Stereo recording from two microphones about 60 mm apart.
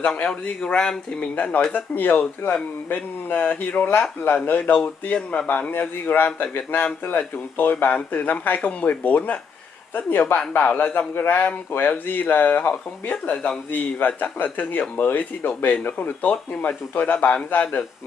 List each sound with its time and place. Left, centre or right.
0.0 s a man's voice: centre; by 4.7 s left
4.8 s a man's voice: left
5.7 s a man's voice: left